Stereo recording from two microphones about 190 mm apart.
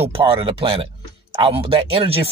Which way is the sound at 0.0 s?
30° right (ahead or behind).